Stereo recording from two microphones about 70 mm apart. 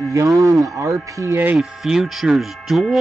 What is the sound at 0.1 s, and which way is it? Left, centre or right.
Speech, right.